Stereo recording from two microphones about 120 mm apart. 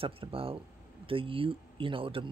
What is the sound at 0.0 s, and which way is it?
Speech, 50° right (ahead or behind).